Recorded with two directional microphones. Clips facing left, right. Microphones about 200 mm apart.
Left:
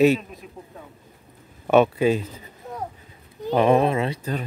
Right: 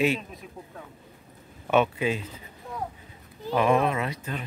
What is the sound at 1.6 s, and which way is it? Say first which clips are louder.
Speech: left 6 dB; 40° left (ahead or behind).